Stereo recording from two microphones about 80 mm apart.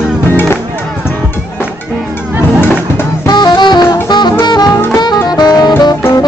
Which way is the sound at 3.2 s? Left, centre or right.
Left.